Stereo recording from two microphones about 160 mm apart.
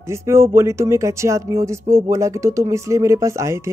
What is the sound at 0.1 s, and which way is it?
Speech, 15° right (ahead or behind).